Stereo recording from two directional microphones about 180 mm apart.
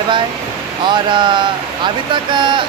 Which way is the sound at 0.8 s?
25° right (ahead or behind).